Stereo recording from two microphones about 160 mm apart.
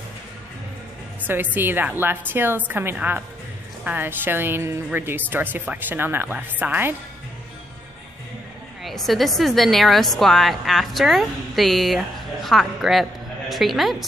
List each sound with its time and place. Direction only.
1.2 s a woman's voice: 10° right (ahead or behind)
8.8 s a woman's voice: centre (ahead or behind)